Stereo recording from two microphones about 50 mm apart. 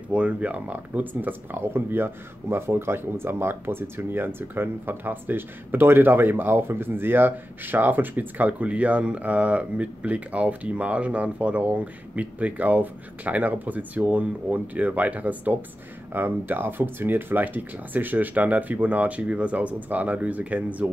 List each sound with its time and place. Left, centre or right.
0.1 s speech: right
16.1 s speech: right